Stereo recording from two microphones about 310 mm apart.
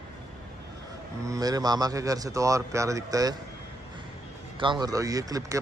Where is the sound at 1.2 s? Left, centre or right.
Centre.